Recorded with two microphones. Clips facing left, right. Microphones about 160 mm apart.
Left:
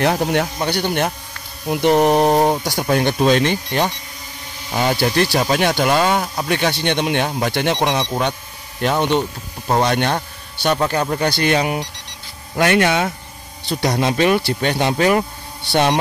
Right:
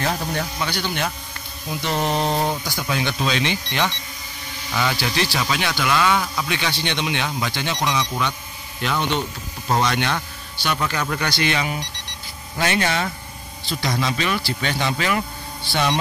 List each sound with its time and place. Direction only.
0.0 s speech: 65° left (ahead or behind)
0.6 s speech: 50° left (ahead or behind); by 2.8 s 65° left (ahead or behind)
2.8 s speech: 50° left (ahead or behind)
9.7 s speech: 35° left (ahead or behind)
9.9 s speech: 50° left (ahead or behind)
11.2 s speech: 50° left (ahead or behind)
15.7 s speech: 60° left (ahead or behind)